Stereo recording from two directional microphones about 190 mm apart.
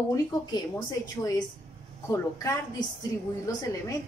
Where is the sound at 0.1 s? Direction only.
20° left (ahead or behind).